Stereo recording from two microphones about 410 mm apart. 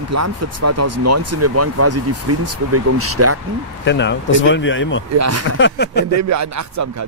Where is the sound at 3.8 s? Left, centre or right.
Left.